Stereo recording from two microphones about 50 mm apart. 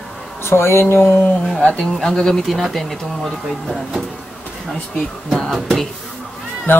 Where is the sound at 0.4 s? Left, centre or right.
Left.